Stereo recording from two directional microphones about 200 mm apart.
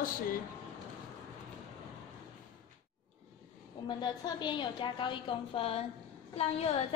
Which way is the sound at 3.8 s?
20° left (ahead or behind).